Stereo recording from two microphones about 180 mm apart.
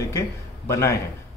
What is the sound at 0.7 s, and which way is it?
Speech, 15° left (ahead or behind).